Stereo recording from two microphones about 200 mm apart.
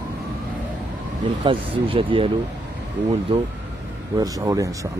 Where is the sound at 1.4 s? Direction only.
25° right (ahead or behind).